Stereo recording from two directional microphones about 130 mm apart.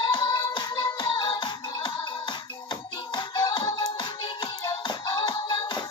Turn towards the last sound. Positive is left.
turn(degrees=35)  # may be behind; listen again after turning